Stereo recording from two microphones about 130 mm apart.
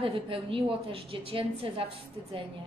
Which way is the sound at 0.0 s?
45° right (ahead or behind).